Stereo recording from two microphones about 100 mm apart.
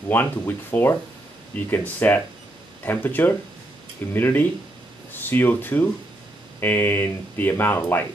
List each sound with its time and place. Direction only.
0.1 s speech: 20° left (ahead or behind)